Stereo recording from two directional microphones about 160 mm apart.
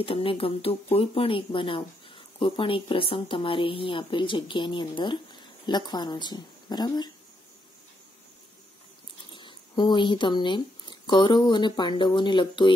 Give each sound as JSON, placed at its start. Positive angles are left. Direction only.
{"t": 0.0, "sound": "speech", "side_deg": 35}
{"t": 9.3, "sound": "speech", "side_deg": 30}